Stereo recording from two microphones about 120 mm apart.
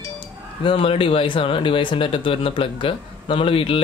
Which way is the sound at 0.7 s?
50° left (ahead or behind).